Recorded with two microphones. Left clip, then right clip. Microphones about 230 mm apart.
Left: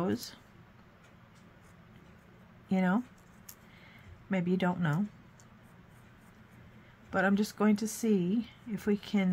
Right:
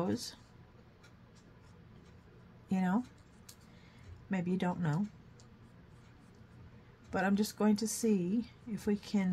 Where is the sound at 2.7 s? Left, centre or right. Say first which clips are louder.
Left 4 dB; centre.